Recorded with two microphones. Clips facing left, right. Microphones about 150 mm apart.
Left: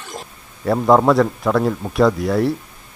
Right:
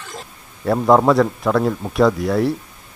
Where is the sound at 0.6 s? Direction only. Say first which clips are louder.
Even; centre (ahead or behind).